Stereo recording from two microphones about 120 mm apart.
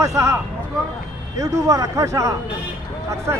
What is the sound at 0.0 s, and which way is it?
Speech, 25° right (ahead or behind).